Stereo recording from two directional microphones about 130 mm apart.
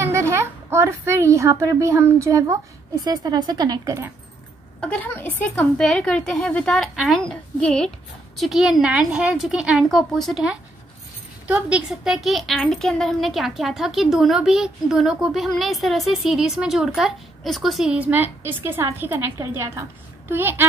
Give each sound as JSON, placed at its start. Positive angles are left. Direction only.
{"t": 0.0, "sound": "a woman's voice", "side_deg": -20}
{"t": 4.7, "sound": "a woman's voice", "side_deg": 10}